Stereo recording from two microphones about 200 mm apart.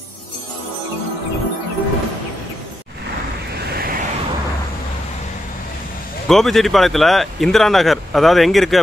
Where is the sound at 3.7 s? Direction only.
50° right (ahead or behind).